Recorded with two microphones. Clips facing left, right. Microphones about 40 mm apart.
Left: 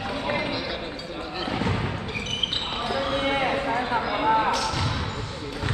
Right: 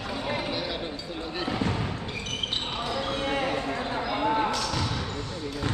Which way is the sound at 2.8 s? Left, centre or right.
Left.